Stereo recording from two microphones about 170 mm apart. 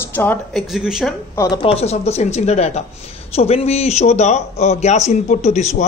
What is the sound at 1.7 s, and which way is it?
Speech, 40° left (ahead or behind).